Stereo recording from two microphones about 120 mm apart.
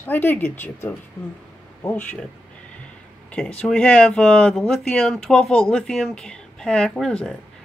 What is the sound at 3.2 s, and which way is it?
Speech, 10° left (ahead or behind).